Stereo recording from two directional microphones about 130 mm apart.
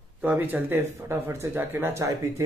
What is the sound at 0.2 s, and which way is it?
Speech, 15° right (ahead or behind).